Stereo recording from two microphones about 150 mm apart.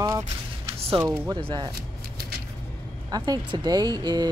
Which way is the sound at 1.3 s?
30° right (ahead or behind).